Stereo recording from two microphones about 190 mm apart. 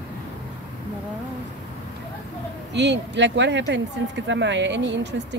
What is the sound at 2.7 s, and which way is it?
Speech, 65° right (ahead or behind).